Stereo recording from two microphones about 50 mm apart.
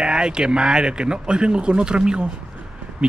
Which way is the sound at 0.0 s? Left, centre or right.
Centre.